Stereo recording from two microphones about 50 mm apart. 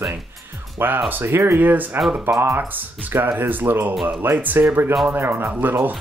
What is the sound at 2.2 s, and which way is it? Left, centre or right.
Speech, right.